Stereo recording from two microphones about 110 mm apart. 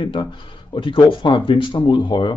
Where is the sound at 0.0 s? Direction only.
50° left (ahead or behind).